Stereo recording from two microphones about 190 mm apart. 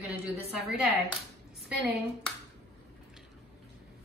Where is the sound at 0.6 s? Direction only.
Centre (ahead or behind).